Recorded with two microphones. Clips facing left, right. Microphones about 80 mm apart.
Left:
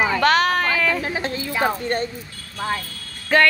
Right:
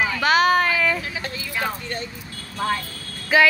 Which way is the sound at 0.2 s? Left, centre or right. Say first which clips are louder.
Right 3 dB; centre.